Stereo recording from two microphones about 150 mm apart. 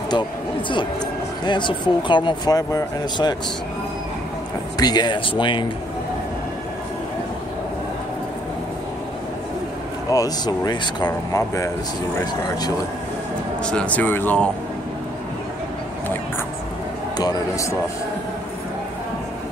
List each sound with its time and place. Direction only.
1.4 s speech: 30° left (ahead or behind)
4.7 s speech: 25° left (ahead or behind)
10.0 s speech: 25° left (ahead or behind)
13.7 s speech: 10° left (ahead or behind)
17.2 s speech: 25° left (ahead or behind)